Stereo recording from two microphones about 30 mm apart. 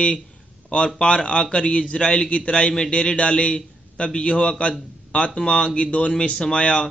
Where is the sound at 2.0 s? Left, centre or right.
Left.